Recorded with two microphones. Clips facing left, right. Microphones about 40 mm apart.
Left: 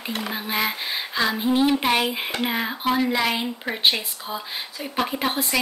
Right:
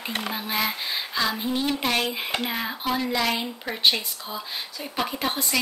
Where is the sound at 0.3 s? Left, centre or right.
Centre.